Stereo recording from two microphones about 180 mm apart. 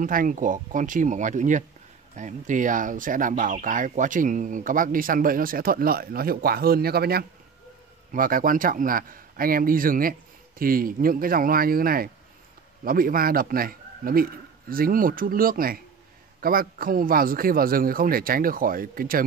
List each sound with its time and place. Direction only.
0.0 s speech: 50° right (ahead or behind)